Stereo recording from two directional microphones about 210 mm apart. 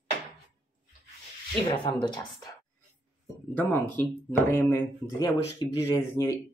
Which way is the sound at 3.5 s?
10° left (ahead or behind).